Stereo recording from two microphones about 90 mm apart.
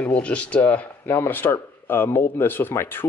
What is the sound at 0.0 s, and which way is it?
Speech, 15° left (ahead or behind).